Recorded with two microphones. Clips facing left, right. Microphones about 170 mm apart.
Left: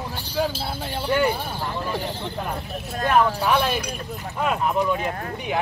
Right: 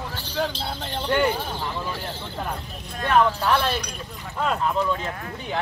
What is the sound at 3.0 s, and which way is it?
Speech, 10° left (ahead or behind).